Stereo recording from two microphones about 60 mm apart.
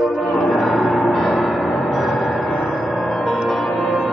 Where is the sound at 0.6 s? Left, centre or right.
Centre.